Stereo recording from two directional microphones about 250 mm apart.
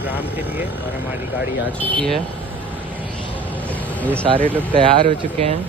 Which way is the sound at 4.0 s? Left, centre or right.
Centre.